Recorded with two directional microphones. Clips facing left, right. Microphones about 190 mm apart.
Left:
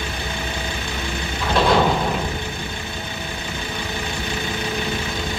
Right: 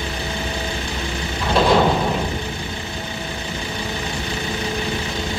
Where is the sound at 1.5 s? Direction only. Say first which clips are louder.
Right 2 dB; 5° right (ahead or behind).